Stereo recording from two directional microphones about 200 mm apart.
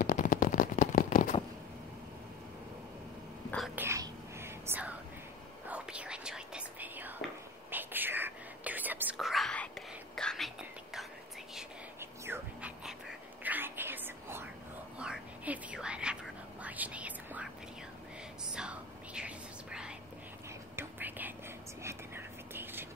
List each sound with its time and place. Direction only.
0.0 s a sound: 40° left (ahead or behind)
3.5 s whispering: centre (ahead or behind)
3.8 s whispering: 15° right (ahead or behind)